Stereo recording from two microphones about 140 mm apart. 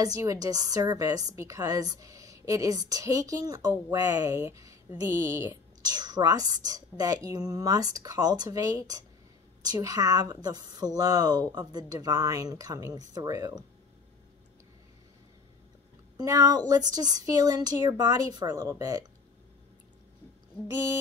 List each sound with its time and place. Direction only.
0.0 s a woman's voice: 25° right (ahead or behind)
16.2 s a woman's voice: 30° right (ahead or behind)
20.6 s a woman's voice: 25° right (ahead or behind)